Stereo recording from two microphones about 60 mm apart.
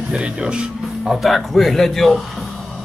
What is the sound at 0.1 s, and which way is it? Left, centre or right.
Speech, centre.